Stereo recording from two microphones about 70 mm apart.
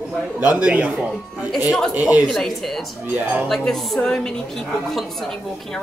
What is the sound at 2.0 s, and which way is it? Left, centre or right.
Speech, right.